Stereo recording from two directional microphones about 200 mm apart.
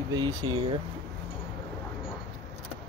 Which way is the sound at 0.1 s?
20° right (ahead or behind).